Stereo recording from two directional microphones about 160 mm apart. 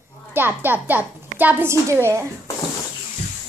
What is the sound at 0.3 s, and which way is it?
A woman's voice, 15° right (ahead or behind).